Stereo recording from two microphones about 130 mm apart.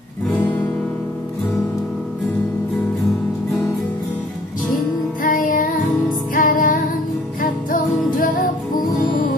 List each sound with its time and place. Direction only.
5.2 s music: 90° left